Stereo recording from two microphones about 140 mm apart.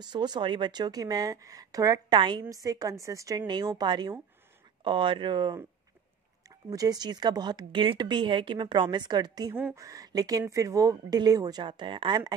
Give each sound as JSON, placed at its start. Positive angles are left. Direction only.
{"t": 0.0, "sound": "speech", "side_deg": -30}
{"t": 6.7, "sound": "speech", "side_deg": -25}
{"t": 9.5, "sound": "speech", "side_deg": -15}
{"t": 9.8, "sound": "speech", "side_deg": -25}